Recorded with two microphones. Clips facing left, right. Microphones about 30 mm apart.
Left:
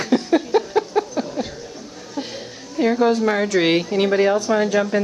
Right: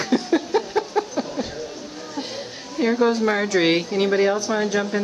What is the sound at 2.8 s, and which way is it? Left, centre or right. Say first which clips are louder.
A woman's voice: left 2 dB; centre.